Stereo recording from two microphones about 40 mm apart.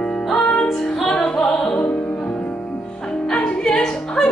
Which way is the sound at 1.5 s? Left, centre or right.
Left.